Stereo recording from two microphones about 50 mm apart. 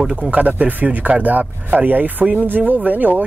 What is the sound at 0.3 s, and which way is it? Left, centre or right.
A man's voice, right.